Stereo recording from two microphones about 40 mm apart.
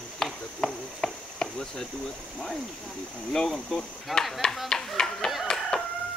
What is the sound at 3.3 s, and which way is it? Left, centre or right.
Speech, centre.